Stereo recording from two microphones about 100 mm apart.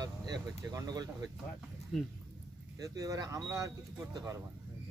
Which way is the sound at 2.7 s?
35° right (ahead or behind).